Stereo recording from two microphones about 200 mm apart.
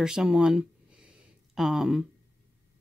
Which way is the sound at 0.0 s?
5° right (ahead or behind).